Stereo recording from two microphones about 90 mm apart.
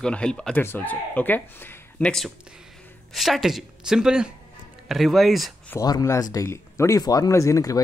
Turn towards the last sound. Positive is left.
turn(degrees=40)  # may be behind; listen again after turning